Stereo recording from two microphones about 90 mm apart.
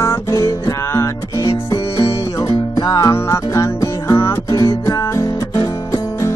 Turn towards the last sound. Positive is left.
turn(degrees=35)  # may be behind; listen again after turning